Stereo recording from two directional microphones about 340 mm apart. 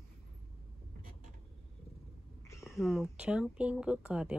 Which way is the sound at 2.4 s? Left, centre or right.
Centre.